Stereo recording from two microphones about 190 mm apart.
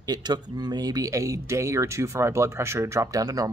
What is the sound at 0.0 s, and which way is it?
Speech, 20° right (ahead or behind).